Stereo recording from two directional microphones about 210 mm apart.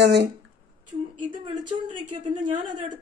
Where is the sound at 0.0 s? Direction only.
55° right (ahead or behind).